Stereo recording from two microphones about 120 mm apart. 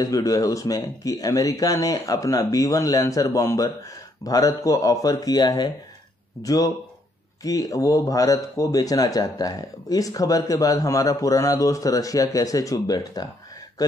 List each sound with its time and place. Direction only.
0.0 s speech: 30° left (ahead or behind)